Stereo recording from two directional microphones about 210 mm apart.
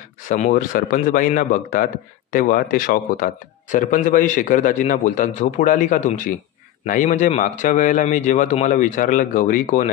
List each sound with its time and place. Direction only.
0.3 s a man's voice: 40° left (ahead or behind)